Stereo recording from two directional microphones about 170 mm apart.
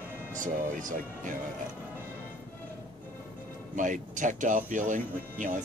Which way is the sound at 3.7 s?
50° right (ahead or behind).